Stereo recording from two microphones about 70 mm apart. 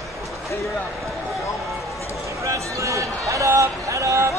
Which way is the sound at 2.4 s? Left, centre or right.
Right.